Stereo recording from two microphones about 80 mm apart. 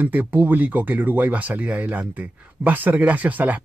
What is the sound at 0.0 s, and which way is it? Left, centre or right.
Speech, right.